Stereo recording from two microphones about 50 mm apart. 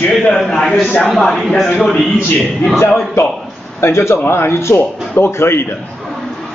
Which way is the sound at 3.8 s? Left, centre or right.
Left.